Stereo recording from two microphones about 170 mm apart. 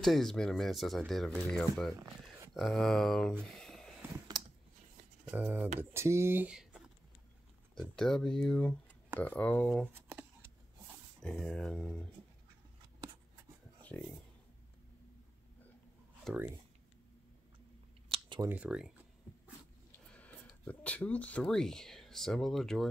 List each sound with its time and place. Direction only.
0.0 s speech: centre (ahead or behind)
3.4 s a sound: centre (ahead or behind)
5.2 s speech: 10° right (ahead or behind)
7.9 s speech: 5° left (ahead or behind)
9.9 s shuffling cards: 10° right (ahead or behind)
11.1 s speech: centre (ahead or behind)
13.8 s speech: 10° left (ahead or behind)
16.3 s speech: centre (ahead or behind)
18.0 s a sound: 30° right (ahead or behind)
18.5 s speech: 5° right (ahead or behind)
19.9 s speech: 10° left (ahead or behind)